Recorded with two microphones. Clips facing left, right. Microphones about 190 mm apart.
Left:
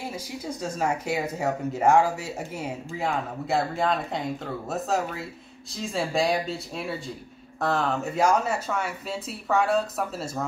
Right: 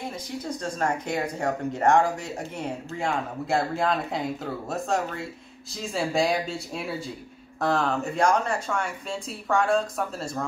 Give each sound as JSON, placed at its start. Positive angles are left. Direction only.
{"t": 0.0, "sound": "speech", "side_deg": 10}